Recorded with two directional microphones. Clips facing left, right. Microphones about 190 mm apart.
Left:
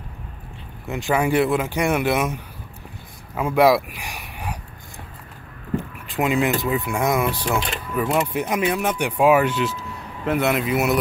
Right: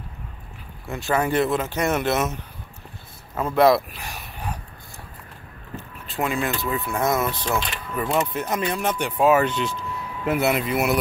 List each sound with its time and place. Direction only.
0.8 s speech: 15° left (ahead or behind)
5.9 s a sound: 15° left (ahead or behind)
6.6 s speech: 15° left (ahead or behind); by 11.0 s centre (ahead or behind)